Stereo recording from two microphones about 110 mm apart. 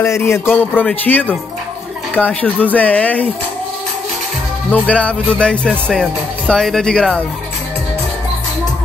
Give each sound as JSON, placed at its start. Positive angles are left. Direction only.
{"t": 0.0, "sound": "speech", "side_deg": 25}
{"t": 4.6, "sound": "speech", "side_deg": 10}